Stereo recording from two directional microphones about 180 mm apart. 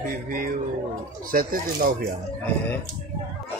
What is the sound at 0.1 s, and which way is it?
Speech, 50° right (ahead or behind).